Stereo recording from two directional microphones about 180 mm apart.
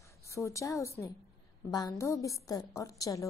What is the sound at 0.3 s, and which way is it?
A woman's voice, 15° left (ahead or behind).